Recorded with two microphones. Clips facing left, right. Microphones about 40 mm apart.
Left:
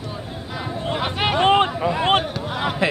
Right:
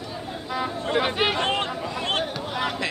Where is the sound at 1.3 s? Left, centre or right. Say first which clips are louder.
Left 8 dB; left.